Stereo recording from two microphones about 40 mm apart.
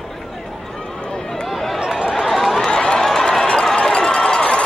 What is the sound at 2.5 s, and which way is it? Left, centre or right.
Crowd, centre.